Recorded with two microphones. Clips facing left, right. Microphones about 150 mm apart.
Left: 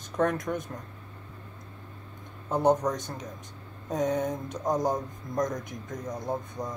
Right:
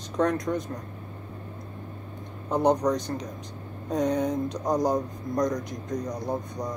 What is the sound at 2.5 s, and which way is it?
Speech, 15° right (ahead or behind).